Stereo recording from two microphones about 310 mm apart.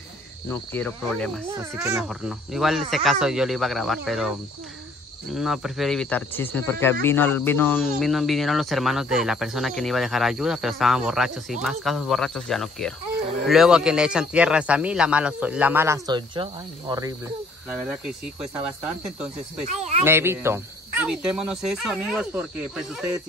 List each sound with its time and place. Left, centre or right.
0.5 s speech: centre
5.3 s speech: centre
17.6 s speech: centre
19.6 s speech: right
20.1 s speech: centre